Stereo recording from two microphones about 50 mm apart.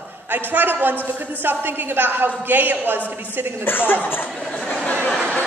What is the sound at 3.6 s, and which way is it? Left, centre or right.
Speech, left.